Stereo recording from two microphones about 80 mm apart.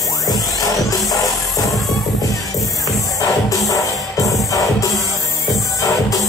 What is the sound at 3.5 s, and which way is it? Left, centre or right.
Music, left.